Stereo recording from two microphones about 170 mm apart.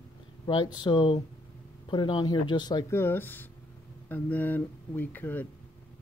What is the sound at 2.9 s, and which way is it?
Speech, 15° left (ahead or behind).